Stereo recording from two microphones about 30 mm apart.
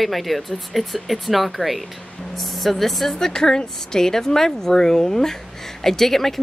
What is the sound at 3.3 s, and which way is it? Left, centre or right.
Speech, left.